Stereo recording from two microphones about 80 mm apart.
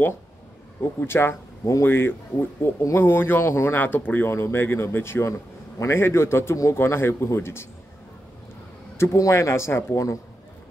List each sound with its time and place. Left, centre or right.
0.9 s a man's voice: left
8.9 s a man's voice: left